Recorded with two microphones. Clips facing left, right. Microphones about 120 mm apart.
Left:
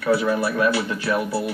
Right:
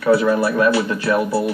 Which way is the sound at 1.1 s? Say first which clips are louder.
Right 5 dB; 30° right (ahead or behind).